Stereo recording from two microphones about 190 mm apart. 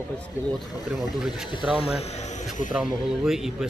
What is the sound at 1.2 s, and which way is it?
Speech, centre (ahead or behind).